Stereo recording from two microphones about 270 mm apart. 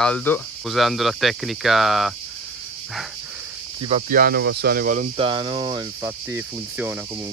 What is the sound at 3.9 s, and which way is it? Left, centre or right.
Speech, right.